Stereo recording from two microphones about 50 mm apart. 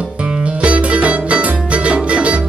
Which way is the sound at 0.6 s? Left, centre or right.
Right.